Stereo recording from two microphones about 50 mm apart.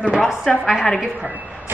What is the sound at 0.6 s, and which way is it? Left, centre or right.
Speech, centre.